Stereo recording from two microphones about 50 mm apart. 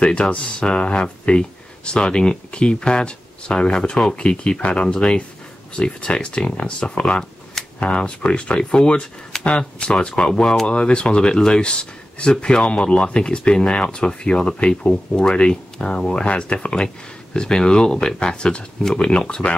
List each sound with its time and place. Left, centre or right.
0.0 s speech: left